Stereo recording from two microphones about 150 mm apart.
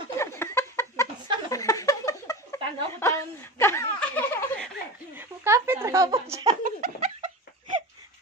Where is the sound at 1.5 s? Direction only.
20° left (ahead or behind).